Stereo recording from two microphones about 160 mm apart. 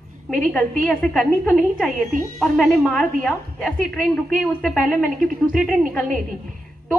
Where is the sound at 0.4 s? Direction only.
5° left (ahead or behind).